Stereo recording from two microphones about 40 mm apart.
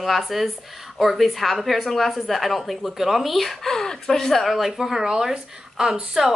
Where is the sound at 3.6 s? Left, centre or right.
Centre.